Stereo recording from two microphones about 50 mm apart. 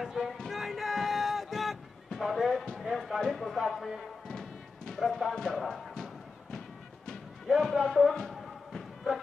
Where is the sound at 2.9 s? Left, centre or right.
Centre.